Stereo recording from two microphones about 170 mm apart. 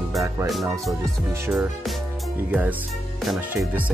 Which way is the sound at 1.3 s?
15° right (ahead or behind).